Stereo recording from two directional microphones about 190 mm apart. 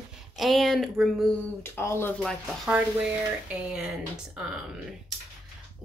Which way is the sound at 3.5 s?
5° right (ahead or behind).